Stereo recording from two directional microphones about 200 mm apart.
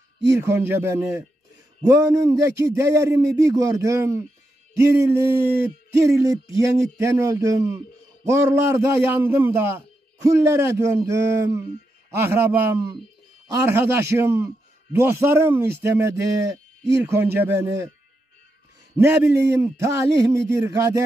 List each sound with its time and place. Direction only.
0.3 s a man's voice: 10° right (ahead or behind)
19.3 s a man's voice: 15° right (ahead or behind)